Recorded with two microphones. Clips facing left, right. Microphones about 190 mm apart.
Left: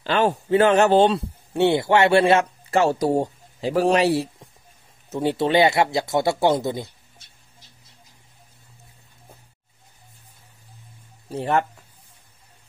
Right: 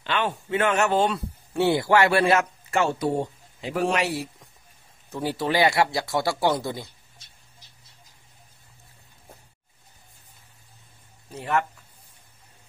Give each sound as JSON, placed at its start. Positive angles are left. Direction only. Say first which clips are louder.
{"t": 0.0, "sound": "speech", "louder": "left 6 dB", "side_deg": 40}
{"t": 11.3, "sound": "speech", "louder": "left 4 dB", "side_deg": 30}